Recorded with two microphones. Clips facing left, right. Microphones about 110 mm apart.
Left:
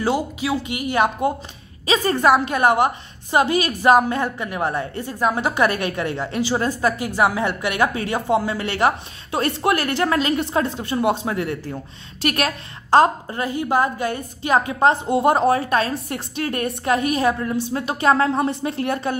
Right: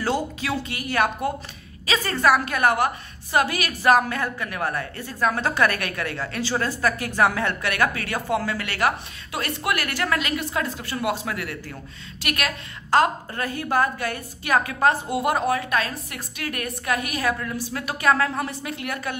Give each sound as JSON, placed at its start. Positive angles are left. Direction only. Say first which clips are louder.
{"t": 0.0, "sound": "a woman's voice", "louder": "left 3 dB", "side_deg": 15}